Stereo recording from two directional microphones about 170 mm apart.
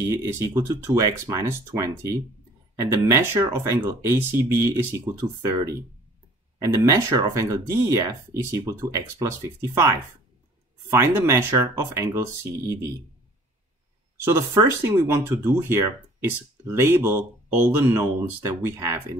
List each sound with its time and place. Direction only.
0.1 s speech: 15° right (ahead or behind)
10.9 s speech: 15° right (ahead or behind)
14.2 s speech: 15° right (ahead or behind)